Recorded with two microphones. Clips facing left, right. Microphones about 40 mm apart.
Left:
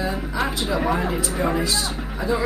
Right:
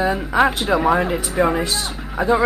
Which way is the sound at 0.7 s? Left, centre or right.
Right.